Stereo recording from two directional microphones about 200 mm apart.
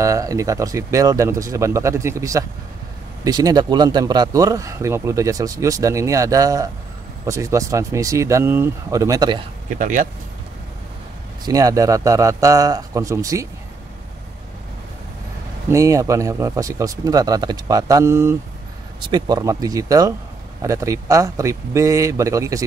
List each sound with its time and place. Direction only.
0.0 s speech: 15° right (ahead or behind)
9.8 s speech: 40° right (ahead or behind)
11.4 s speech: 15° right (ahead or behind)
15.7 s speech: 15° right (ahead or behind)